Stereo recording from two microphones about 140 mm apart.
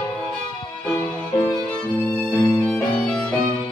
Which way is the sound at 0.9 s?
15° left (ahead or behind).